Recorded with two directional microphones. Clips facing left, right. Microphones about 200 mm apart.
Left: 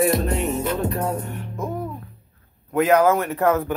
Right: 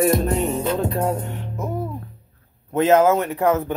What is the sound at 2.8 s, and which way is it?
Speech, 25° right (ahead or behind).